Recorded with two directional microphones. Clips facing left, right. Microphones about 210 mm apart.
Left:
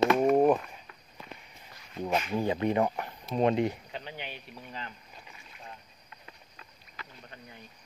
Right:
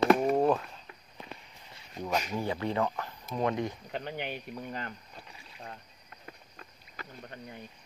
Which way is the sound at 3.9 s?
50° right (ahead or behind).